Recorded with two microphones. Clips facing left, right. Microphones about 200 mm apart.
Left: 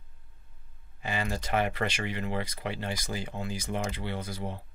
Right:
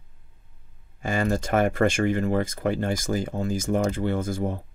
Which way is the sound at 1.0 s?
45° right (ahead or behind).